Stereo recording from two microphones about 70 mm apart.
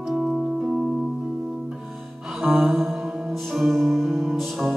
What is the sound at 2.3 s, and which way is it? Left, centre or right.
Music, centre.